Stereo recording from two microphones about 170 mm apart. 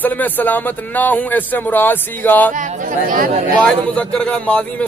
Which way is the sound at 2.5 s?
50° right (ahead or behind).